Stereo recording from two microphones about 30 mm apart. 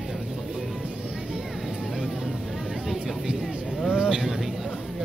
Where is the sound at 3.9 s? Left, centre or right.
Right.